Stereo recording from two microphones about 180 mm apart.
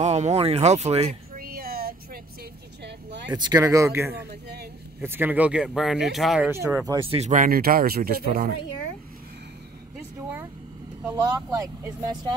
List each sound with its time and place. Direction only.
0.0 s speech: 40° right (ahead or behind)
1.4 s a sound: 55° right (ahead or behind)
2.8 s vehicle: 70° right (ahead or behind)
3.3 s speech: 25° right (ahead or behind)
4.1 s a man's voice: 65° right (ahead or behind)
5.0 s speech: 10° right (ahead or behind)
6.5 s speech: 15° right (ahead or behind)
6.9 s speech: 30° right (ahead or behind); by 8.5 s 55° right (ahead or behind)
11.1 s speech: 20° right (ahead or behind)